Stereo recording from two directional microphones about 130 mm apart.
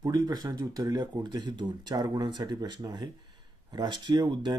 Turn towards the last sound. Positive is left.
turn(degrees=-35)  # may be behind; listen again after turning